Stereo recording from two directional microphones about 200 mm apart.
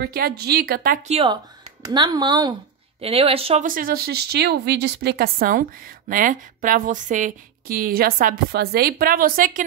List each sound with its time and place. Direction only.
0.0 s speech: 50° right (ahead or behind)
1.0 s speech: 30° right (ahead or behind)
3.6 s speech: 45° right (ahead or behind)